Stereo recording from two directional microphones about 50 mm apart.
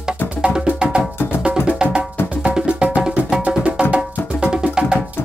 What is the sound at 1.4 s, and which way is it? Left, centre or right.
Wood block, centre.